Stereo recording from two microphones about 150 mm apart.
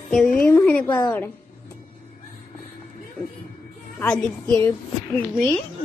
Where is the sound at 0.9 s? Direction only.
15° left (ahead or behind).